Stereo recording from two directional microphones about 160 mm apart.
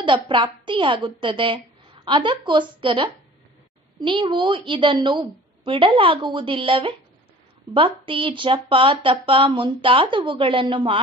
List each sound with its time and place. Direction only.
0.0 s speech: 30° right (ahead or behind)